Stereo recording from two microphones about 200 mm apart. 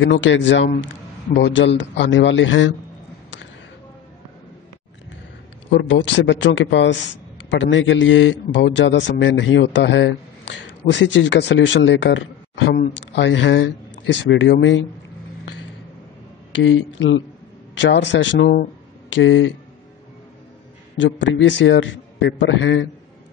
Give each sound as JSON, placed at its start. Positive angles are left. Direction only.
{"t": 0.0, "sound": "speech", "side_deg": 65}
{"t": 5.7, "sound": "speech", "side_deg": 60}
{"t": 16.5, "sound": "speech", "side_deg": 70}
{"t": 21.0, "sound": "speech", "side_deg": 70}